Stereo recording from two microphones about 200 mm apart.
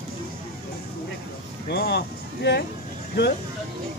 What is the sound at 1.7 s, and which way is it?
Speech, 55° left (ahead or behind).